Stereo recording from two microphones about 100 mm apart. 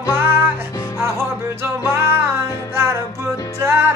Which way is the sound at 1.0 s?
25° right (ahead or behind).